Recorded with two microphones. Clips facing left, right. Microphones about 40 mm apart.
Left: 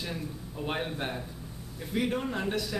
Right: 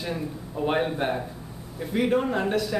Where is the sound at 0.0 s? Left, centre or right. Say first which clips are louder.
Right 6 dB; centre.